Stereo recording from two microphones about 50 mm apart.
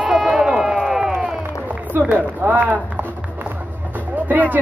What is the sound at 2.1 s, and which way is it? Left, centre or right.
Speech, right.